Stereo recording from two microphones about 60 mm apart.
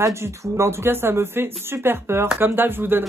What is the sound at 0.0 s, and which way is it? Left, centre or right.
Speech, right.